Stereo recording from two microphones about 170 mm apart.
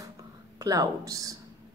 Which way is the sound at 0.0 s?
20° right (ahead or behind).